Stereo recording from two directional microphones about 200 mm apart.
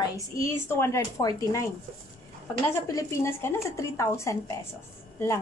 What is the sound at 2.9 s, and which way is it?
A woman's voice, 15° left (ahead or behind).